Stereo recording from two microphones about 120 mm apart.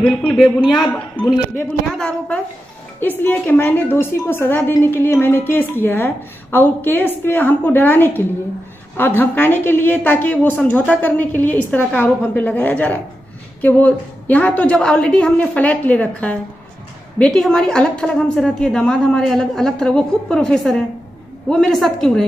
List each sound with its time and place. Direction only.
0.0 s a woman's voice: centre (ahead or behind)